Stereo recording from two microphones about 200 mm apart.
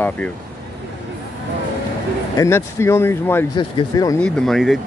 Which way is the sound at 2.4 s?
10° left (ahead or behind).